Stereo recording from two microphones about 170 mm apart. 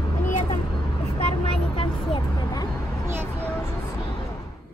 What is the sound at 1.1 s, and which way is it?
Vehicle, 30° left (ahead or behind).